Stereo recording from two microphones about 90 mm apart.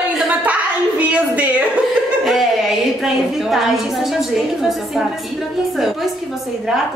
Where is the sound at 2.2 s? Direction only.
Centre (ahead or behind).